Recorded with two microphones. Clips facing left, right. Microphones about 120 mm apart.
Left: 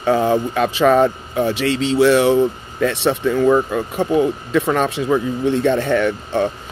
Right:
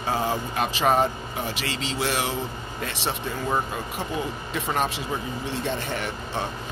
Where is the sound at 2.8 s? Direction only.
70° left (ahead or behind); by 3.8 s 90° left.